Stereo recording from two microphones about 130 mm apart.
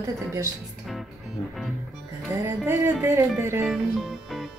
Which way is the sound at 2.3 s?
20° right (ahead or behind).